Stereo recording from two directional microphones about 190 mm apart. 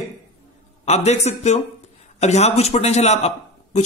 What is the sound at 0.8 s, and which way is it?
A man's voice, 35° left (ahead or behind).